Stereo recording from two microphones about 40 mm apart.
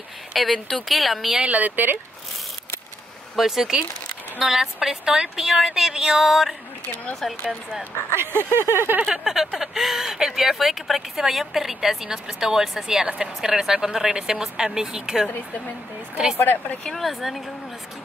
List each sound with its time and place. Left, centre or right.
0.3 s speech: centre
1.4 s speech: right
3.3 s speech: centre
8.1 s a sound: right
9.0 s speech: centre
16.3 s speech: left
17.0 s speech: centre